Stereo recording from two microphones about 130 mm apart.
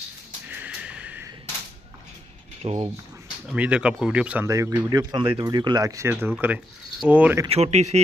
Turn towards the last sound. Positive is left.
turn(degrees=-60)  # may be behind; listen again after turning